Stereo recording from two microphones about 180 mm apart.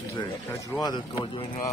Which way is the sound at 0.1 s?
15° left (ahead or behind).